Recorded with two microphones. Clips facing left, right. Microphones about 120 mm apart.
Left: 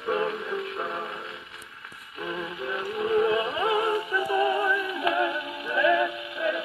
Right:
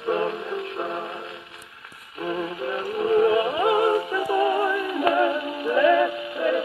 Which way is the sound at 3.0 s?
40° right (ahead or behind).